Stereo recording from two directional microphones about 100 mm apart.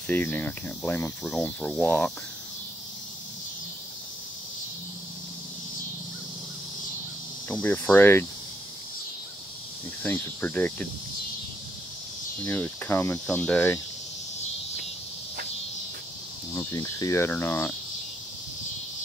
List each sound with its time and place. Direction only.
0.0 s speech: 15° left (ahead or behind)
7.4 s speech: 15° left (ahead or behind)
10.0 s speech: 20° left (ahead or behind)
12.4 s speech: 20° left (ahead or behind)
16.5 s speech: 30° left (ahead or behind)